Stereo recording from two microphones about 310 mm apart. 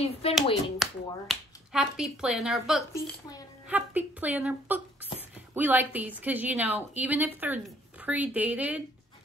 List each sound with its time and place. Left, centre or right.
0.2 s speech: centre
0.7 s a woman's voice: centre